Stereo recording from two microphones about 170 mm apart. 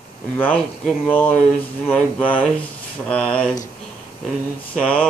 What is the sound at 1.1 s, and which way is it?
Speech, 10° left (ahead or behind).